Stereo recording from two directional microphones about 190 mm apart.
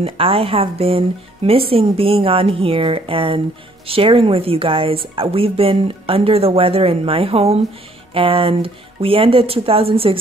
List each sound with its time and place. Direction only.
0.0 s speech: 30° right (ahead or behind)